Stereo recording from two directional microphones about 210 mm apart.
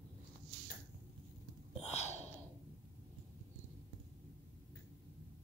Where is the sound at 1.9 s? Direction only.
30° left (ahead or behind).